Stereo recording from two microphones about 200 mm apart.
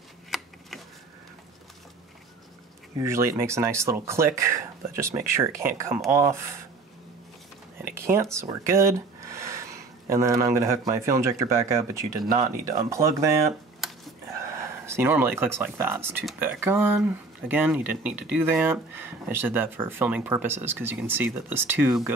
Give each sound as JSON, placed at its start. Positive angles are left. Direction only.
{"t": 0.3, "sound": "a sound", "side_deg": 0}
{"t": 3.0, "sound": "speech", "side_deg": -15}
{"t": 7.8, "sound": "whispering", "side_deg": -15}
{"t": 8.4, "sound": "speech", "side_deg": -15}
{"t": 14.9, "sound": "speech", "side_deg": -10}